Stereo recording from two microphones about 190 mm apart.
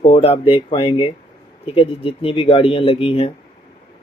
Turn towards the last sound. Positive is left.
turn(degrees=30)  # may be behind; listen again after turning